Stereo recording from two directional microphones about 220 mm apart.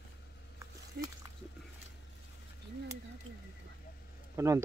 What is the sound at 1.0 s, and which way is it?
Dog, 45° right (ahead or behind).